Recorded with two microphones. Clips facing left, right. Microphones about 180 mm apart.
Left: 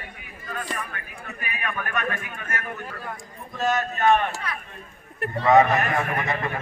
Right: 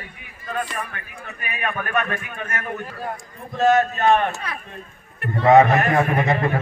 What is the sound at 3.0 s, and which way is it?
A man's voice, 50° right (ahead or behind).